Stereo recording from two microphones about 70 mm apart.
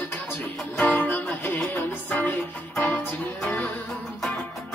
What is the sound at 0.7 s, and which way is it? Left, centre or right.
Music, centre.